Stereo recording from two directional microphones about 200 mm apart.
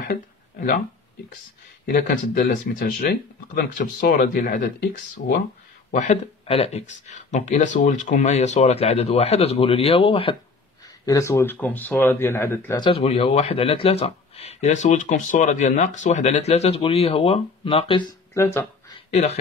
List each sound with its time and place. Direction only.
0.1 s speech: 45° left (ahead or behind)
1.9 s speech: 45° left (ahead or behind)
5.9 s speech: 35° left (ahead or behind)
11.1 s speech: 15° left (ahead or behind)
12.8 s speech: 30° left (ahead or behind); by 18.7 s 15° left (ahead or behind)
19.0 s speech: 35° left (ahead or behind)